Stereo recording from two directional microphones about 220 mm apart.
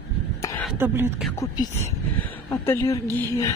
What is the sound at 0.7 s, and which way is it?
Speech, 10° right (ahead or behind).